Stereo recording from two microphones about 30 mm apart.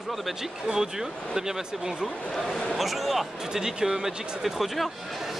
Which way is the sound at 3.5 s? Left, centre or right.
Centre.